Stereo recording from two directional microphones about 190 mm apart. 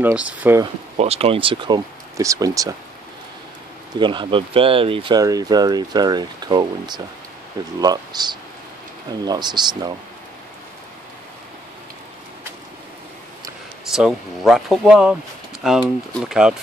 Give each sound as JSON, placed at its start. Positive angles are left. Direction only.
{"t": 0.0, "sound": "speech", "side_deg": -5}
{"t": 0.9, "sound": "speech", "side_deg": -35}
{"t": 4.0, "sound": "speech", "side_deg": -25}
{"t": 13.8, "sound": "speech", "side_deg": 0}